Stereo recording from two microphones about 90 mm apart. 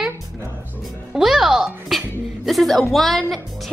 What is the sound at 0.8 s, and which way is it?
Music, 5° right (ahead or behind).